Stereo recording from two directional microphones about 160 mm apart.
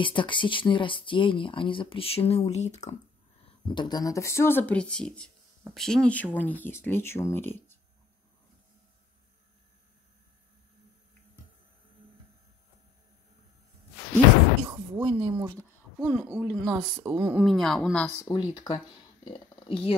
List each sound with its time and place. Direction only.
0.0 s speech: 30° left (ahead or behind)
3.6 s speech: 30° left (ahead or behind)
14.7 s a woman's voice: 30° right (ahead or behind)
16.3 s speech: 15° right (ahead or behind)
16.6 s a woman's voice: 25° right (ahead or behind)
17.1 s speech: 10° right (ahead or behind)
18.0 s speech: 20° left (ahead or behind)